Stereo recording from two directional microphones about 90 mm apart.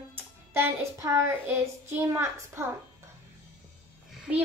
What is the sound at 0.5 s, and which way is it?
A child's voice, 35° right (ahead or behind).